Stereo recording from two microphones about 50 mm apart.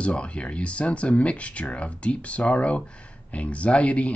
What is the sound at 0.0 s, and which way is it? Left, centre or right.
Speech, left.